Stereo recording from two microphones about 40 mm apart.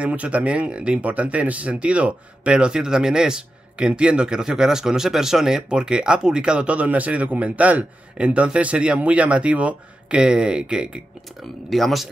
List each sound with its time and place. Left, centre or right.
0.0 s speech: right
4.4 s speech: centre
5.7 s speech: right
11.7 s speech: centre